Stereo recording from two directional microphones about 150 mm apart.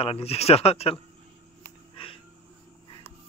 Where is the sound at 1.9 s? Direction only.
35° left (ahead or behind).